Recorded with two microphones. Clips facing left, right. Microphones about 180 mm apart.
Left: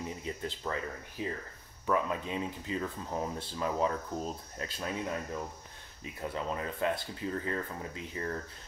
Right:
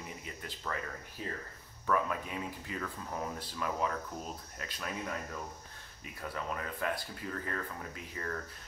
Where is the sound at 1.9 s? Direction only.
25° left (ahead or behind).